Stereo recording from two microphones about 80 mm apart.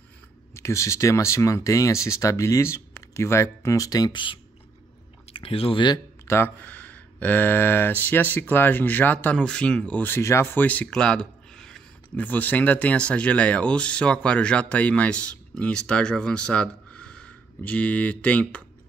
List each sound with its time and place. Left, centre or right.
0.6 s speech: left
4.1 s speech: left
5.7 s speech: left
6.2 s speech: left
6.6 s speech: centre
10.4 s speech: left
10.9 s a sound: centre
12.2 s speech: left